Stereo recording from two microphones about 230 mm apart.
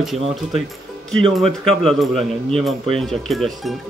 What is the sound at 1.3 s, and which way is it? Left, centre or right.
Speech, centre.